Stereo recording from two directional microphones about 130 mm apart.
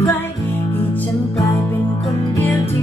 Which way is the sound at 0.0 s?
15° left (ahead or behind).